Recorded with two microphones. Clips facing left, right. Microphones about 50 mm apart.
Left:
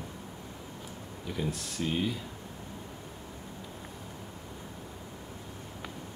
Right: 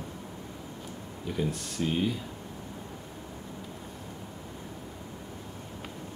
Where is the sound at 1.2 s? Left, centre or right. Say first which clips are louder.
Right 3 dB; centre.